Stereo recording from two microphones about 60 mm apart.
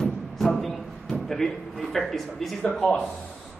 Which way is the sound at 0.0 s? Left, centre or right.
Centre.